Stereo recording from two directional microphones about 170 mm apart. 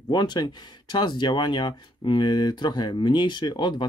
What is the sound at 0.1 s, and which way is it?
Speech, 25° left (ahead or behind).